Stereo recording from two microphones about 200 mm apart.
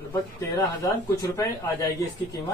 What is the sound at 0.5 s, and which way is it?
Speech, 15° left (ahead or behind).